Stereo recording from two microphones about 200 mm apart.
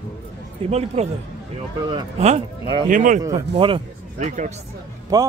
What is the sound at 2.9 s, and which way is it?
Speech, 40° right (ahead or behind).